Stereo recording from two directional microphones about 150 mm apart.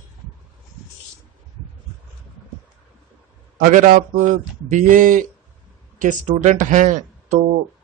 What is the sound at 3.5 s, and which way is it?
A man's voice, 65° right (ahead or behind).